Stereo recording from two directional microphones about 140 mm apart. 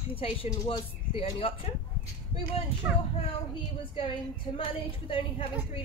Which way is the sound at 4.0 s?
40° left (ahead or behind).